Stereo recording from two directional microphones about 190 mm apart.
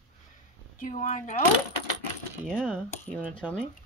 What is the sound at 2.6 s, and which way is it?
Speech, 5° left (ahead or behind).